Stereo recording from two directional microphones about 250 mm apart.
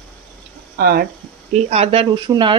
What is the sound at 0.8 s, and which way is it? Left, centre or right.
Speech, right.